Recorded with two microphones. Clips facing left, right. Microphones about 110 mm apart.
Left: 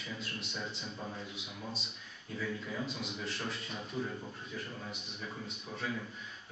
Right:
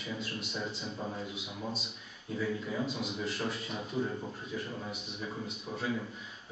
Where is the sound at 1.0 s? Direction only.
15° right (ahead or behind).